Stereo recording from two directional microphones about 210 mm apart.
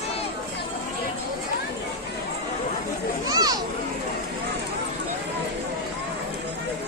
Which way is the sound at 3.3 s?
20° right (ahead or behind).